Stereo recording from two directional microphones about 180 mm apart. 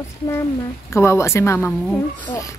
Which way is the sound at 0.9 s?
15° left (ahead or behind).